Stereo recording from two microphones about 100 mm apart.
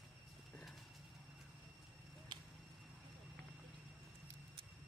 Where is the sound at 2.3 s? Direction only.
50° right (ahead or behind).